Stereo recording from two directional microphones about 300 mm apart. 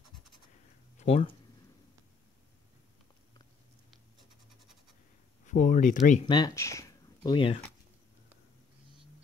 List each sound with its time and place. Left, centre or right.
0.9 s speech: left
5.5 s speech: left